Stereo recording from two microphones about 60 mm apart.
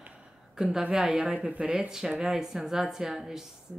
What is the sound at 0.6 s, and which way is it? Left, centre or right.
A man's voice, centre.